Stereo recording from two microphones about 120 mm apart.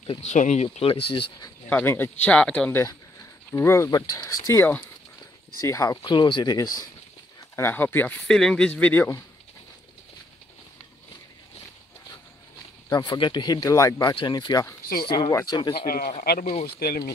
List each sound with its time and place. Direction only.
0.2 s speech: 80° left
0.7 s speech: 50° left (ahead or behind)
1.7 s speech: 15° left (ahead or behind)
2.7 s speech: 25° left (ahead or behind)
6.0 s speech: 40° left (ahead or behind); by 8.2 s 15° left (ahead or behind)
8.3 s speech: 5° left (ahead or behind)
12.9 s speech: 35° left (ahead or behind)
14.1 s speech: 40° left (ahead or behind)
16.1 s speech: 60° left (ahead or behind)